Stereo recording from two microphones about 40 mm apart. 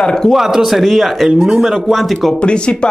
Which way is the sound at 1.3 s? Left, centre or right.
Centre.